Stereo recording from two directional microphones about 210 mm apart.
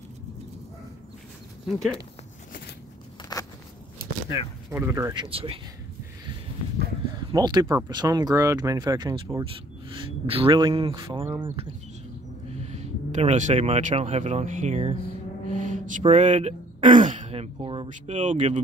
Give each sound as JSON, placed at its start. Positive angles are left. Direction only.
{"t": 3.3, "sound": "walk", "side_deg": 20}
{"t": 4.0, "sound": "speech", "side_deg": -10}
{"t": 7.3, "sound": "speech", "side_deg": -20}
{"t": 11.2, "sound": "speech", "side_deg": -10}
{"t": 12.6, "sound": "speech", "side_deg": -30}
{"t": 17.8, "sound": "speech", "side_deg": -35}